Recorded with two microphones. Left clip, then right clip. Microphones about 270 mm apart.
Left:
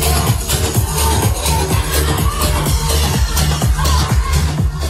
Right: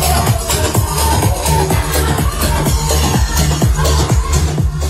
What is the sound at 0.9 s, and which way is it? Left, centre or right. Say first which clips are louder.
Music: right 1 dB; right.